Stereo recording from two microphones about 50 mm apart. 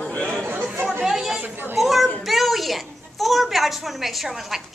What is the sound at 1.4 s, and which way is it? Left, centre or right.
Chatter, right.